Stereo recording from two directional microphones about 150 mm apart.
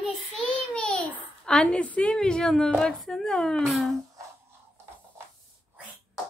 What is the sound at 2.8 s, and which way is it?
A woman's voice, 5° left (ahead or behind).